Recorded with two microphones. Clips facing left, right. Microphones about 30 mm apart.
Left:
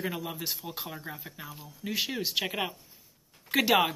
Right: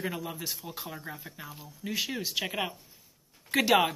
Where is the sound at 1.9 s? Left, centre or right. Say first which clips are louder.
Left 2 dB; centre.